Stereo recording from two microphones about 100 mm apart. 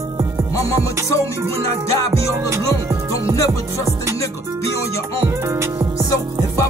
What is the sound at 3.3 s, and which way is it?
Music, 35° left (ahead or behind).